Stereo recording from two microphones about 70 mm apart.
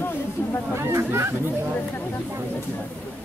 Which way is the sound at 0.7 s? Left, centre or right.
Right.